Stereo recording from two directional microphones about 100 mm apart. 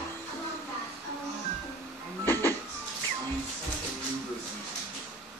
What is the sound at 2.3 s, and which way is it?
Music, 20° left (ahead or behind).